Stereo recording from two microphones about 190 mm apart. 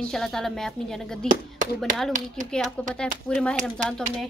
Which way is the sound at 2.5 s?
Centre (ahead or behind).